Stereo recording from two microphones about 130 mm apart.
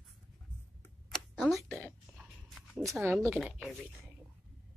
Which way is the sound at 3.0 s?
20° right (ahead or behind).